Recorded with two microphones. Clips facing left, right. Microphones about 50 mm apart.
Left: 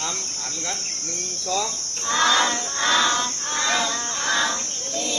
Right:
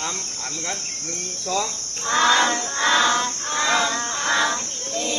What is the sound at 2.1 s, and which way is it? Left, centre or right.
Chicken, right.